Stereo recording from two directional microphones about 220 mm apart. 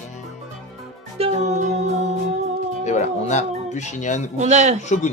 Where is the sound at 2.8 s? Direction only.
30° left (ahead or behind).